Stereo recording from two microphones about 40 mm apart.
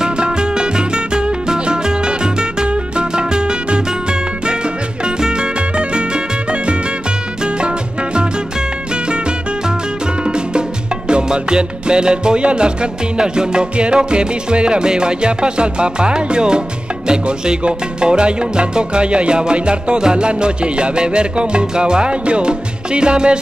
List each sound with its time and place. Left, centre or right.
0.0 s music: right
10.2 s music: right